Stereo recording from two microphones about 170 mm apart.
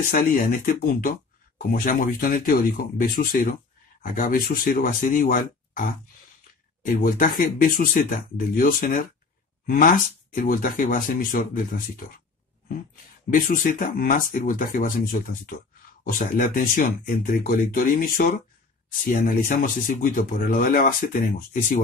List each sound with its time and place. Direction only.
0.0 s speech: 60° left (ahead or behind)
6.9 s speech: 55° left (ahead or behind)
13.3 s speech: 55° left (ahead or behind)